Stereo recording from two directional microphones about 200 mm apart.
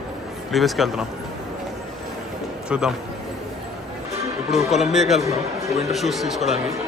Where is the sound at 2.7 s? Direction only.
5° right (ahead or behind).